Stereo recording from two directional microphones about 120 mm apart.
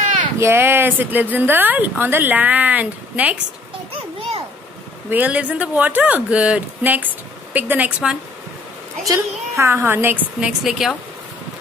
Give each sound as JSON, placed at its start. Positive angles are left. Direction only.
{"t": 0.4, "sound": "speech", "side_deg": -20}
{"t": 5.1, "sound": "speech", "side_deg": -10}
{"t": 9.0, "sound": "a woman's voice", "side_deg": -25}
{"t": 10.4, "sound": "speech", "side_deg": -5}